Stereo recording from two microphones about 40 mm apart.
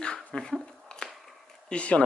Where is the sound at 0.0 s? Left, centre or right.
Centre.